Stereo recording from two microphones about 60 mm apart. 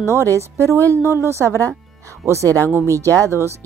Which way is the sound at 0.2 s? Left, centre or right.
Right.